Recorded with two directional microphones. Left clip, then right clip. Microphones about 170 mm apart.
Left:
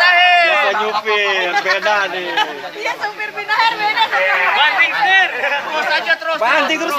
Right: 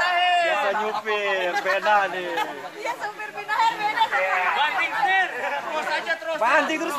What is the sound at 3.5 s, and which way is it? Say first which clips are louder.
Speech: left 7 dB; 35° right (ahead or behind).